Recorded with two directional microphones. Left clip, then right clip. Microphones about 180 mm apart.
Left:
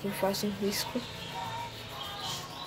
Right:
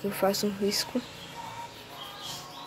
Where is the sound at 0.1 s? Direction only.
50° right (ahead or behind).